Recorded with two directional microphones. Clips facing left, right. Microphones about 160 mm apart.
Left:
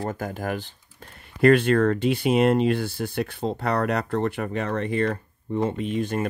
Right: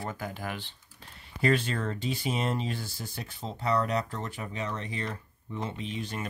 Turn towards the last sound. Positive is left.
turn(degrees=50)  # may be behind; listen again after turning